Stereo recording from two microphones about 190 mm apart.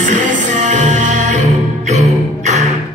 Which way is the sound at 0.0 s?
40° right (ahead or behind).